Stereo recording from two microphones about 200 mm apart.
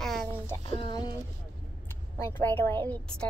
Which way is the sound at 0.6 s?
25° left (ahead or behind).